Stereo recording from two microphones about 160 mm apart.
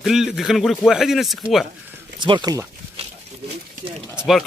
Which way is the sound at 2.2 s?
30° right (ahead or behind).